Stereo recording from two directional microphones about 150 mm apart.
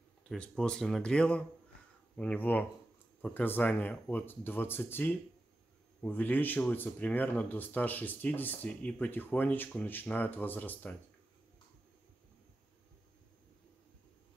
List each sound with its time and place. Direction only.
0.3 s speech: 5° left (ahead or behind)